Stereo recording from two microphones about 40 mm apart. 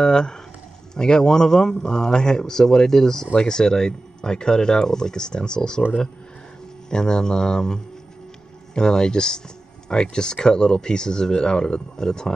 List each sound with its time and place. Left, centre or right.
0.0 s speech: centre
6.9 s speech: centre